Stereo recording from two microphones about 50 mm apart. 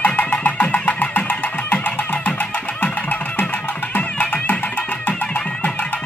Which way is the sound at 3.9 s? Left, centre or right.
Left.